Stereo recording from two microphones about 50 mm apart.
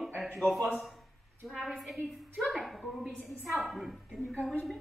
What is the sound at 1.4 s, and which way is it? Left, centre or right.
A woman's voice, centre.